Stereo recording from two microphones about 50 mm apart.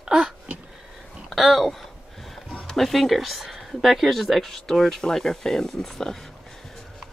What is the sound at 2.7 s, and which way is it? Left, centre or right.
Speech, centre.